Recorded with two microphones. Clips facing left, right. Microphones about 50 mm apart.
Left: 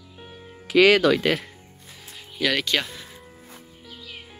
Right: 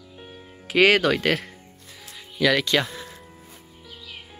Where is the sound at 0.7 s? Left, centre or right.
Right.